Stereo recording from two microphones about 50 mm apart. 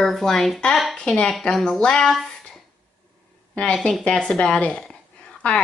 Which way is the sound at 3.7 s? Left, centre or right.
Centre.